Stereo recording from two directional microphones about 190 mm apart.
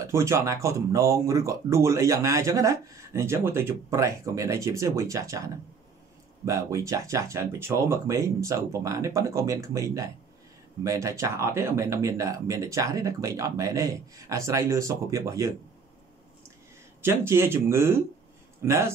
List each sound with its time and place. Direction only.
0.0 s speech: 15° right (ahead or behind)
17.0 s speech: 15° right (ahead or behind)